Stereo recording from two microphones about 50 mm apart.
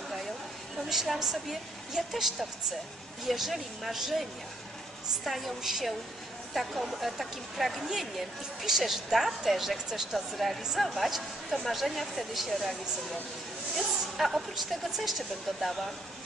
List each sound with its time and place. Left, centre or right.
0.8 s speech: centre
3.3 s speech: centre
13.7 s speech: centre